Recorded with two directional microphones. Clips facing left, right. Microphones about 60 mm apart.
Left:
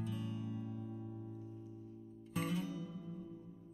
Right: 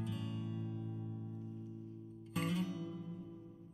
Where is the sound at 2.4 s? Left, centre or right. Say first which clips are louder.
Right 1 dB; right.